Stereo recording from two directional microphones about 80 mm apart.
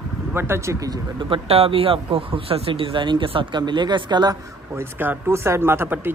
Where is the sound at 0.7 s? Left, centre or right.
Right.